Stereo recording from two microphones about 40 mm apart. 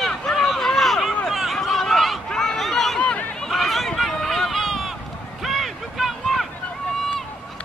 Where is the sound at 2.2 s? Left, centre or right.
Centre.